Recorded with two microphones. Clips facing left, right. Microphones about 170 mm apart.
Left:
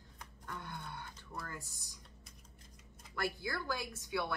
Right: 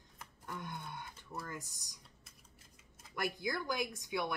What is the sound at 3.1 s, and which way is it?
Speech, 15° right (ahead or behind).